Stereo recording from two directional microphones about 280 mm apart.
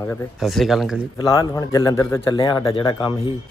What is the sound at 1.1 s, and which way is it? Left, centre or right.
A man's voice, centre.